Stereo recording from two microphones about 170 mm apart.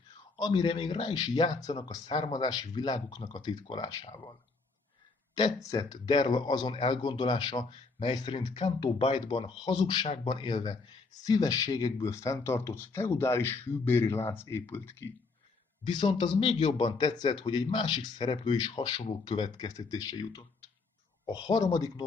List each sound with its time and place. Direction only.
0.4 s speech: 25° left (ahead or behind)
15.8 s speech: 30° left (ahead or behind)